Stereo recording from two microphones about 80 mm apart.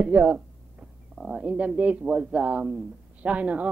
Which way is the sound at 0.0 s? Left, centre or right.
Centre.